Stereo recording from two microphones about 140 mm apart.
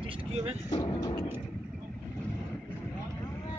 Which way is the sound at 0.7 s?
25° left (ahead or behind).